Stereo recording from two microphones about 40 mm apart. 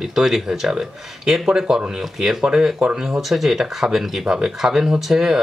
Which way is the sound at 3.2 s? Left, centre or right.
Centre.